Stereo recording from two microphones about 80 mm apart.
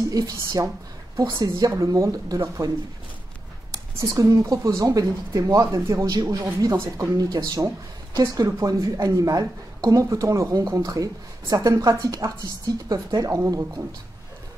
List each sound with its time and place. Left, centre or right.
0.1 s speech: right
3.7 s speech: right